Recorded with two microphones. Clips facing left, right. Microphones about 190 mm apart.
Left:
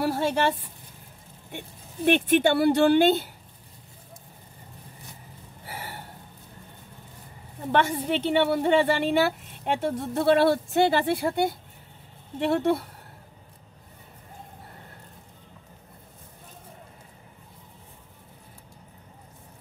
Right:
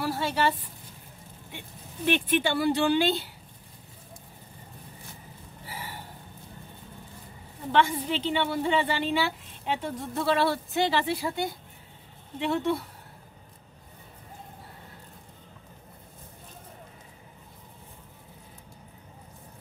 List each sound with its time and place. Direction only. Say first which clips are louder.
0.0 s speech: left 3 dB; 50° left (ahead or behind)
2.0 s a woman's voice: left 5 dB; 50° left (ahead or behind)
5.7 s a sound: left 2 dB; 50° left (ahead or behind)
7.7 s a woman's voice: left 1 dB; 50° left (ahead or behind)